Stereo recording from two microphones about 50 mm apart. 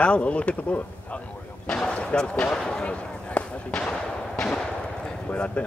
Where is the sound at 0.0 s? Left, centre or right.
Left.